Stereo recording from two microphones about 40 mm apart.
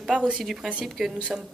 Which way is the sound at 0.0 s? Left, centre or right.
Right.